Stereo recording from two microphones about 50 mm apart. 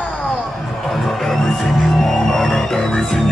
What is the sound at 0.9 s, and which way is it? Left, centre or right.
Music, centre.